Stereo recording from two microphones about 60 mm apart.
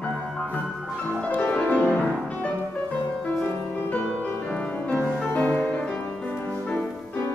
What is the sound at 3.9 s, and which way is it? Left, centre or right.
Music, left.